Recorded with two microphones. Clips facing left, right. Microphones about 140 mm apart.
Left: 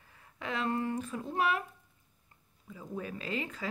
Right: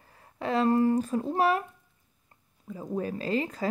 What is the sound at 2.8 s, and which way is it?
Speech, 40° right (ahead or behind).